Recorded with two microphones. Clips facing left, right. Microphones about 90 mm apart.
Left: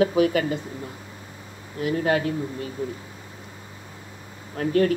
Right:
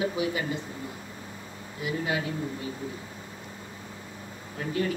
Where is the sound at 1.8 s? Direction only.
50° left (ahead or behind).